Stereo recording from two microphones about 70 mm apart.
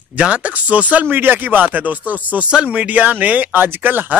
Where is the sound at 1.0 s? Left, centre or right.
Right.